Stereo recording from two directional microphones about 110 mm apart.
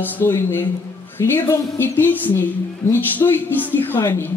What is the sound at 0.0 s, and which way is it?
A man's voice, 20° left (ahead or behind).